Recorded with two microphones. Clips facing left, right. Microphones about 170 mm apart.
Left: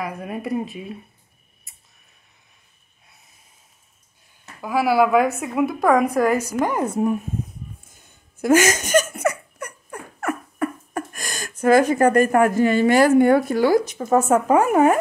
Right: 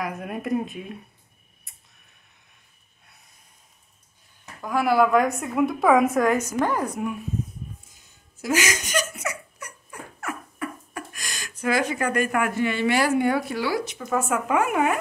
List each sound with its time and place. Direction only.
0.0 s a woman's voice: centre (ahead or behind)
4.6 s a woman's voice: 5° left (ahead or behind)
6.6 s speech: 20° left (ahead or behind)
7.9 s speech: 55° left (ahead or behind)